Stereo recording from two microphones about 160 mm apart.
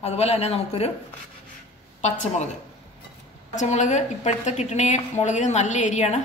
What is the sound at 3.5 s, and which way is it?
A woman's voice, 50° left (ahead or behind).